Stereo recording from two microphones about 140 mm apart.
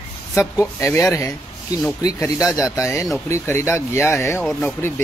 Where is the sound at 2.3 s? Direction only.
20° left (ahead or behind).